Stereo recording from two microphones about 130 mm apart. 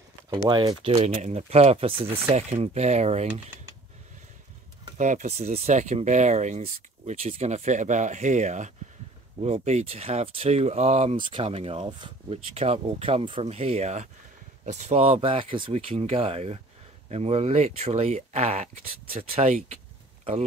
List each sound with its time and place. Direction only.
0.5 s speech: 35° right (ahead or behind)
0.8 s speech: 55° right (ahead or behind)
4.9 s speech: 70° right (ahead or behind)
9.4 s speech: 55° right (ahead or behind)
11.1 s speech: 40° right (ahead or behind); by 19.8 s 60° right (ahead or behind)